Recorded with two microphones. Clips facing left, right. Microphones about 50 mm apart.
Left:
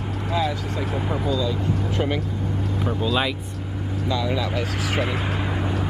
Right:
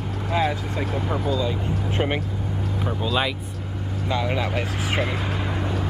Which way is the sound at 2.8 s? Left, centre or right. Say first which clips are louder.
Left 1 dB; centre.